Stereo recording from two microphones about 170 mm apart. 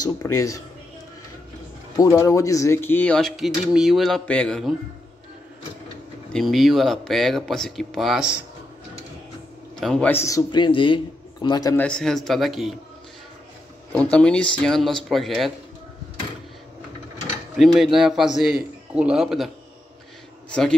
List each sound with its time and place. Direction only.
0.0 s a man's voice: 20° left (ahead or behind)
2.0 s speech: 20° left (ahead or behind); by 4.7 s 5° left (ahead or behind)
6.3 s speech: centre (ahead or behind)
9.8 s a man's voice: 5° left (ahead or behind); by 11.7 s 25° left (ahead or behind)
11.7 s speech: 5° left (ahead or behind)
14.1 s speech: 5° left (ahead or behind)
17.6 s speech: centre (ahead or behind)